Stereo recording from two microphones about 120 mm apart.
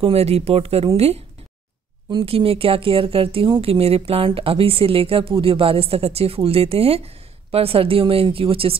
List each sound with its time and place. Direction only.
0.0 s speech: 60° right (ahead or behind)
2.0 s speech: 45° right (ahead or behind)